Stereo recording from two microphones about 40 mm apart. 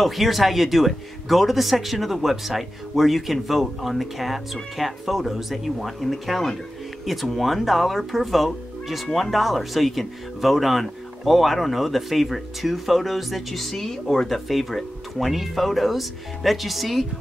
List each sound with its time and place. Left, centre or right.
0.0 s speech: centre